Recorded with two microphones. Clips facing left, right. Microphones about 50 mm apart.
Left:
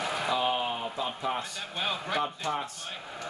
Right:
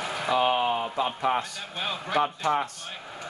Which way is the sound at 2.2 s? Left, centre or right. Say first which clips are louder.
Right 10 dB; right.